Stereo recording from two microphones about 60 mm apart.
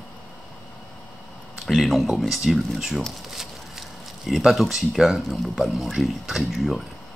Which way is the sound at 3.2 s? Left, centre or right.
Centre.